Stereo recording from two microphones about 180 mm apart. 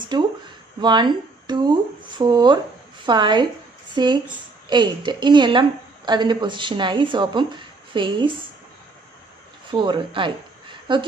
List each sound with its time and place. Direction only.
0.1 s a woman's voice: 25° right (ahead or behind)
9.7 s a woman's voice: 25° right (ahead or behind)